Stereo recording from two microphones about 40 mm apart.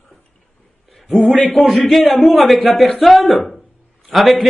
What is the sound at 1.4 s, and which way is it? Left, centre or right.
Speech, centre.